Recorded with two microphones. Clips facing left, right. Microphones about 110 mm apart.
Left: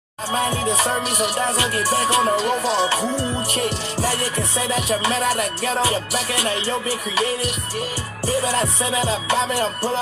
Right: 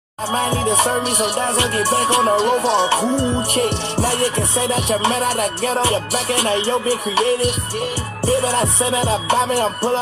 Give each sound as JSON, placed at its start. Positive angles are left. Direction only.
{"t": 0.3, "sound": "music", "side_deg": -30}
{"t": 5.2, "sound": "music", "side_deg": -40}
{"t": 8.3, "sound": "music", "side_deg": -25}